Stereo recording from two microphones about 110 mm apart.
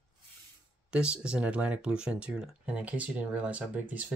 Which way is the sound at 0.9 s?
10° right (ahead or behind).